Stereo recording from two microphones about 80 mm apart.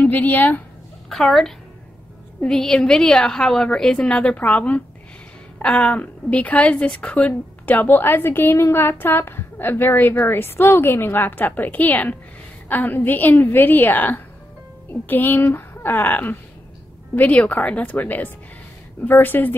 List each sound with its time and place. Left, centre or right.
0.0 s a woman's voice: left
1.0 s a woman's voice: centre; by 19.5 s left